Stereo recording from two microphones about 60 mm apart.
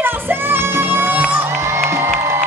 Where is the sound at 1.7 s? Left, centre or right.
Right.